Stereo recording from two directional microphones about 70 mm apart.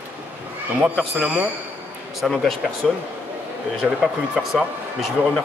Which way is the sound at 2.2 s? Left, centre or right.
Centre.